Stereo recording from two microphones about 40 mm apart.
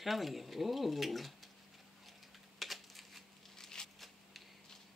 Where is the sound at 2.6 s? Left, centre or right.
Centre.